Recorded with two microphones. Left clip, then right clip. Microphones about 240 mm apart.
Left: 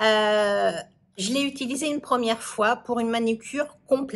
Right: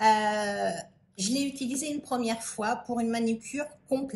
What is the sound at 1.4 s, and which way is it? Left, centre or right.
Speech, left.